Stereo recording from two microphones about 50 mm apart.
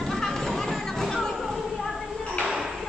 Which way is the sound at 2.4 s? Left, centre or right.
Centre.